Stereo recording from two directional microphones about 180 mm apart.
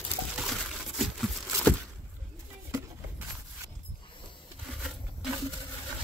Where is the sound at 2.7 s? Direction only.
15° right (ahead or behind).